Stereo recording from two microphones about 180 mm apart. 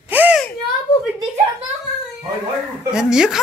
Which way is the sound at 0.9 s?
20° left (ahead or behind).